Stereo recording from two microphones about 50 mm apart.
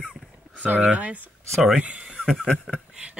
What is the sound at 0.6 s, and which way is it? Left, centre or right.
Speech, right.